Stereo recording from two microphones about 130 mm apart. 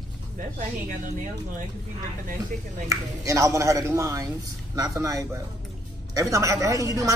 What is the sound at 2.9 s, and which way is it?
Speech, 25° right (ahead or behind).